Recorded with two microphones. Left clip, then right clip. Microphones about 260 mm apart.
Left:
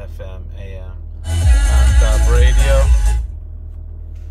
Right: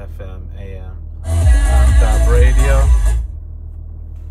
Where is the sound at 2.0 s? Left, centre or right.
Left.